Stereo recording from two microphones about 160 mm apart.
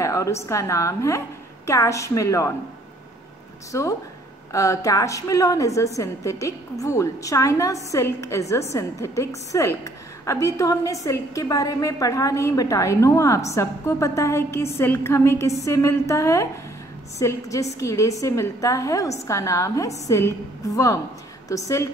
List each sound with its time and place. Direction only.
0.0 s a woman's voice: 20° left (ahead or behind)
4.5 s a woman's voice: 20° left (ahead or behind)